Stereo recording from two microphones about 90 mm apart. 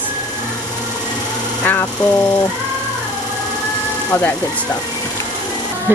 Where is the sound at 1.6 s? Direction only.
15° left (ahead or behind).